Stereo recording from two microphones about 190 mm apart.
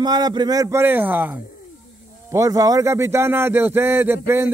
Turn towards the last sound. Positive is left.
turn(degrees=-10)  # may be behind; listen again after turning